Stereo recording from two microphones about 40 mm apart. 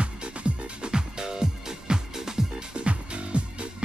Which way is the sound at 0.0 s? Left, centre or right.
Right.